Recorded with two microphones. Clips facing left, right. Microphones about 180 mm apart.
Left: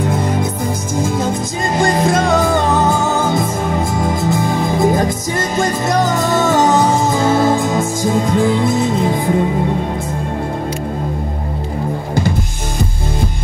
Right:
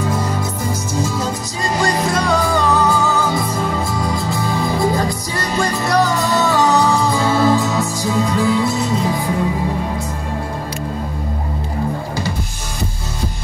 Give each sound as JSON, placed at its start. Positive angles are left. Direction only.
{"t": 0.0, "sound": "music", "side_deg": 55}